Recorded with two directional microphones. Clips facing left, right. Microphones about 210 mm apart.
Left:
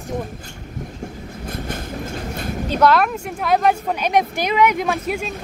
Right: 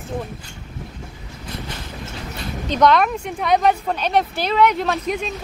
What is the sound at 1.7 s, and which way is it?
Train, 50° left (ahead or behind).